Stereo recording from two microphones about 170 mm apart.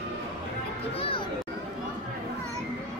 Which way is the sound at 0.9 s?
35° left (ahead or behind).